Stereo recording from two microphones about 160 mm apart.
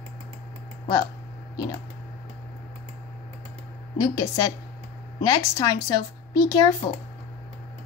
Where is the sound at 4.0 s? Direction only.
25° left (ahead or behind).